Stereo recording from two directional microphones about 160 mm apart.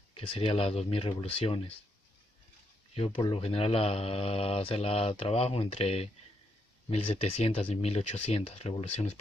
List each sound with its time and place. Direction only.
0.1 s speech: 35° left (ahead or behind)
2.9 s speech: 35° left (ahead or behind)